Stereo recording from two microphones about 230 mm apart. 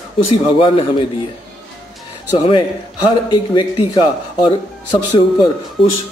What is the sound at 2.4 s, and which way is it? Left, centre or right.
A man's voice, centre.